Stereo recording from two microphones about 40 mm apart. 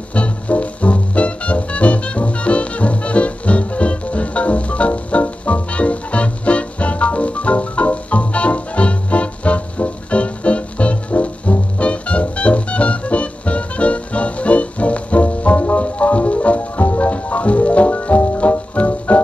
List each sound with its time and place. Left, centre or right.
0.1 s music: left